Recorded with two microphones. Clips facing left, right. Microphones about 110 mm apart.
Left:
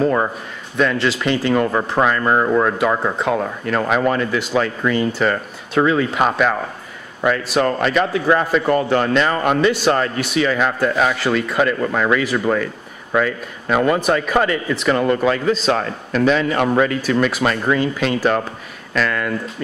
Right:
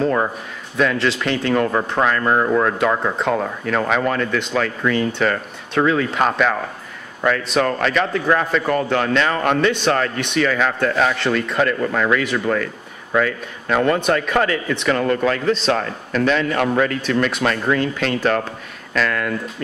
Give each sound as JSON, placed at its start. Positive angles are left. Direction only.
{"t": 0.0, "sound": "a man's voice", "side_deg": 5}